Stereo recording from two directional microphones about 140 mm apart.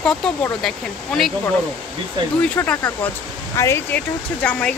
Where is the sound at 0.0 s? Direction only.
5° left (ahead or behind).